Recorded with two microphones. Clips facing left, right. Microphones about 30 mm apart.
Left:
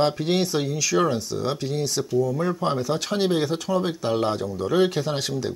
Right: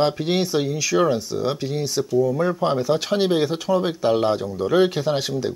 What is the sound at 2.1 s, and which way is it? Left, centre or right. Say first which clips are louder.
Speech: right 4 dB; centre.